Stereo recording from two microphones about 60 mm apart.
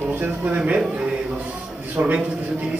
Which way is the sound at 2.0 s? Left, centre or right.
Right.